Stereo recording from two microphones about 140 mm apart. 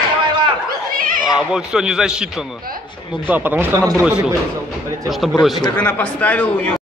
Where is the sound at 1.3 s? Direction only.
5° right (ahead or behind); by 4.0 s 20° right (ahead or behind).